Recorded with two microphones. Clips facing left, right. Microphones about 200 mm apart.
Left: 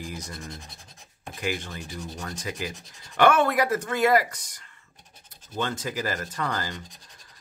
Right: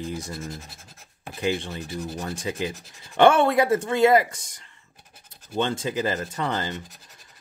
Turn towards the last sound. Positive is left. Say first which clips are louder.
# right 3 dB
turn(degrees=-25)  # may be behind; listen again after turning